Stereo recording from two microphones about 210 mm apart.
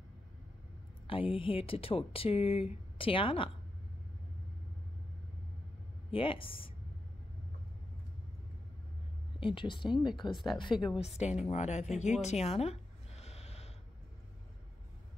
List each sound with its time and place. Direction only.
1.0 s speech: 25° left (ahead or behind)
6.1 s speech: 25° left (ahead or behind)
9.4 s speech: 25° left (ahead or behind)
10.3 s a woman's voice: centre (ahead or behind)
11.1 s speech: 30° left (ahead or behind)
12.0 s a sound: 35° left (ahead or behind)